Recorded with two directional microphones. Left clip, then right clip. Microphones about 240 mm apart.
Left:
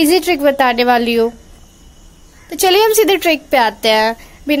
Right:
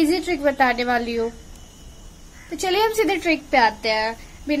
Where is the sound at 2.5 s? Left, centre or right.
Left.